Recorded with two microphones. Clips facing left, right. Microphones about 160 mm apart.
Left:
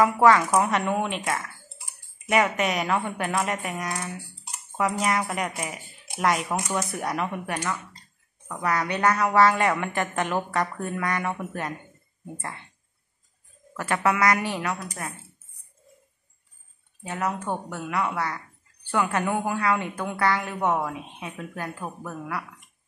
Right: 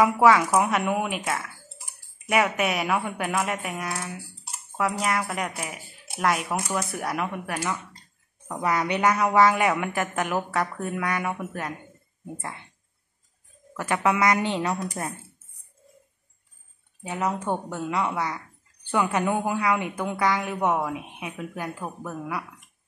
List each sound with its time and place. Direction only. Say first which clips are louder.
0.0 s a woman's voice: even; 10° right (ahead or behind)
8.5 s a woman's voice: right 1 dB; 15° right (ahead or behind)
13.7 s speech: even; 15° right (ahead or behind)
17.0 s a woman's voice: right 1 dB; 15° right (ahead or behind)